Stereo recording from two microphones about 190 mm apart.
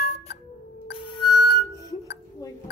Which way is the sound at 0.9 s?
25° left (ahead or behind).